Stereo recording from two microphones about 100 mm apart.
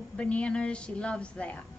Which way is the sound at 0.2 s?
10° left (ahead or behind).